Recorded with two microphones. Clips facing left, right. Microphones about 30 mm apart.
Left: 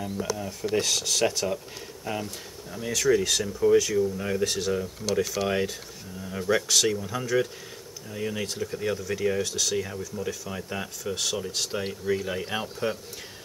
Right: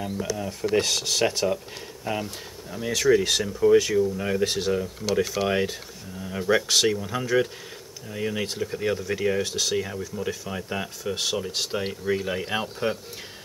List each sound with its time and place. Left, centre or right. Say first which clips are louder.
0.4 s speech: right 5 dB; centre